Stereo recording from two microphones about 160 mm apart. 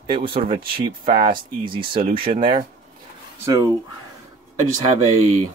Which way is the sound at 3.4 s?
20° right (ahead or behind).